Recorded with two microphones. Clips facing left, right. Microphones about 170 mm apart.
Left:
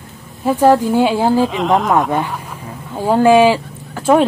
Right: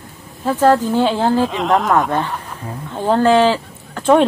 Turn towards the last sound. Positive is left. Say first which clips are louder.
# even
turn(degrees=10)  # may be behind; listen again after turning